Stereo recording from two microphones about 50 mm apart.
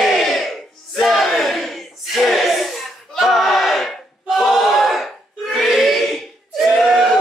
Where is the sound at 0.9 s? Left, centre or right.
Centre.